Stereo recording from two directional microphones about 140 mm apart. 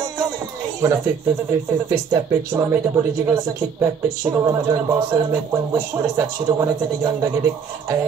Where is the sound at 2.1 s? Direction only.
20° right (ahead or behind).